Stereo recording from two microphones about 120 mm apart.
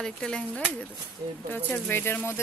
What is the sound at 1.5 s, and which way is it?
Speech, 15° left (ahead or behind).